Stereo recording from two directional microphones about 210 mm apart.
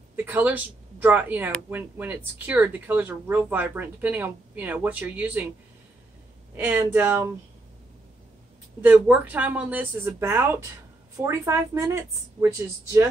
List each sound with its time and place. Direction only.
0.1 s speech: 10° right (ahead or behind)
6.5 s speech: 10° right (ahead or behind)
8.8 s speech: 10° right (ahead or behind)